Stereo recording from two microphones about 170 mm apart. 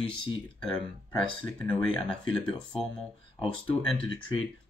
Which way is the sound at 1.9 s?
30° left (ahead or behind).